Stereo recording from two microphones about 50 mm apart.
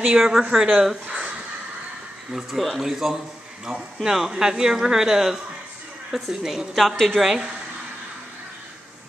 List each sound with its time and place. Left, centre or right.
0.0 s speech: centre
1.0 s a sound: right
2.3 s speech: centre